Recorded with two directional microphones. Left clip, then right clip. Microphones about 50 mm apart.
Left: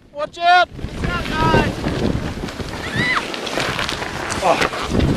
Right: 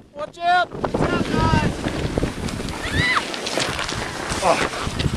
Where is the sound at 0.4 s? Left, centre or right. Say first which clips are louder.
Left 5 dB; left.